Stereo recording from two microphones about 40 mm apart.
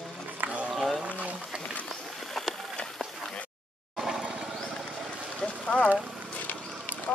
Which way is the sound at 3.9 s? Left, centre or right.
Centre.